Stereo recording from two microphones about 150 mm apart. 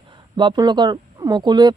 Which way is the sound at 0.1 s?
30° right (ahead or behind).